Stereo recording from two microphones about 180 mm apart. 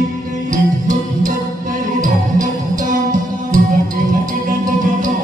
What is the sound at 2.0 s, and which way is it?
Music, 45° right (ahead or behind).